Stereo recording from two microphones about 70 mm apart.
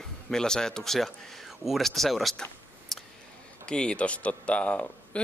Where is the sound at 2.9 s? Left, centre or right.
Centre.